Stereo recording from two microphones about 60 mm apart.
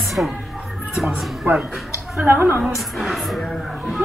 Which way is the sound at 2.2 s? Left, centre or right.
Right.